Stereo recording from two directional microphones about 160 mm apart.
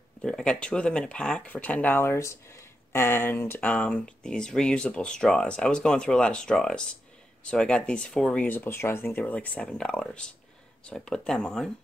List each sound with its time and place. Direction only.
0.2 s speech: 5° left (ahead or behind)